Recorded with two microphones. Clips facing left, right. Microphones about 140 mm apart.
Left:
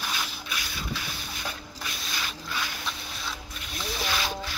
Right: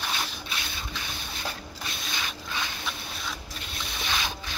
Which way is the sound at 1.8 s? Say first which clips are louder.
Even; 20° right (ahead or behind).